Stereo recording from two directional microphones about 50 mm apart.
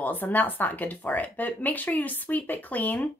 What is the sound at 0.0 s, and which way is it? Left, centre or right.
Speech, left.